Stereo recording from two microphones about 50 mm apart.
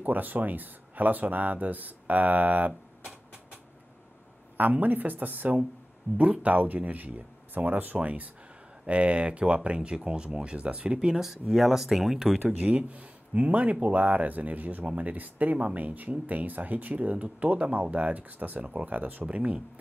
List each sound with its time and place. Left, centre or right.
0.0 s speech: right
4.6 s speech: right
11.1 s speech: centre
12.5 s speech: right